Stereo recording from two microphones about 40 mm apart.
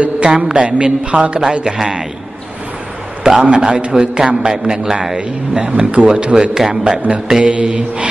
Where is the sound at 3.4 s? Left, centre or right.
Right.